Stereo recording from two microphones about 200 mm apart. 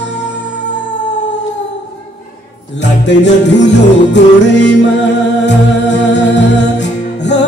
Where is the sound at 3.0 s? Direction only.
60° left (ahead or behind).